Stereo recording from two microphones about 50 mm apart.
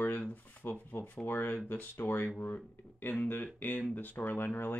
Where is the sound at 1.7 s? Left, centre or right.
Left.